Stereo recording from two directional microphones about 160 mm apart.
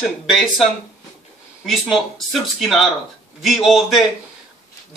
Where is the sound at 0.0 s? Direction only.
Centre (ahead or behind).